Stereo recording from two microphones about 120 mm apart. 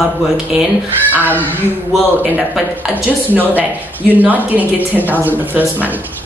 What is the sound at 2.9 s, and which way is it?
A woman's voice, 15° right (ahead or behind).